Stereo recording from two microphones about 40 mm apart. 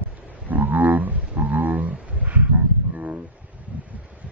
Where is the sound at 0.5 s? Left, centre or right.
Right.